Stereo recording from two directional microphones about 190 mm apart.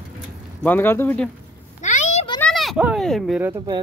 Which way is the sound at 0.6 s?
10° left (ahead or behind).